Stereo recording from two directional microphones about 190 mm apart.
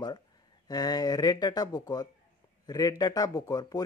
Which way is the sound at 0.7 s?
20° left (ahead or behind).